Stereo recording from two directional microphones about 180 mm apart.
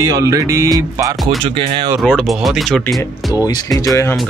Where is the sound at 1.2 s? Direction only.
30° right (ahead or behind).